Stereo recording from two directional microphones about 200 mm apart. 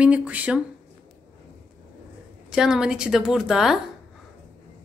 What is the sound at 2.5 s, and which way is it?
A woman's voice, 5° right (ahead or behind).